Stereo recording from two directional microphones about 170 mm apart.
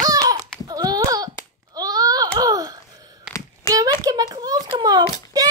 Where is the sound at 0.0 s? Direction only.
20° right (ahead or behind).